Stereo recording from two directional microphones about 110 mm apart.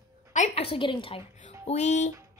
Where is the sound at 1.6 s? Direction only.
85° left.